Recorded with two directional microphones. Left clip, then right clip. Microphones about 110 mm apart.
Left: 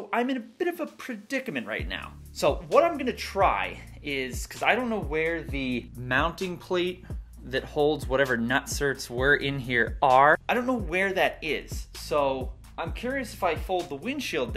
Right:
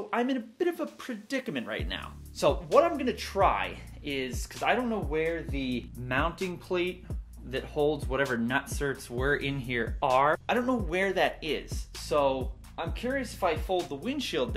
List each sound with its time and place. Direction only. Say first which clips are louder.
0.1 s speech: left 3 dB; 10° left (ahead or behind)
5.2 s speech: left 3 dB; 35° left (ahead or behind)
10.4 s speech: left 2 dB; 10° left (ahead or behind)
13.7 s speech: left 1 dB; centre (ahead or behind)